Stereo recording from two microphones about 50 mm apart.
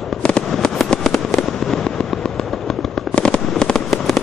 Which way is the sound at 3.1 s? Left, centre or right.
Centre.